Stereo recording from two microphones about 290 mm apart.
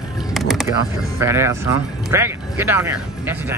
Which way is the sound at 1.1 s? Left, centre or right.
Centre.